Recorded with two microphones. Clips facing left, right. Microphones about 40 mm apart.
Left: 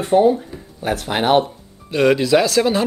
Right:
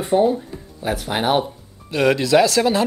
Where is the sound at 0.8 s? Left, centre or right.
Left.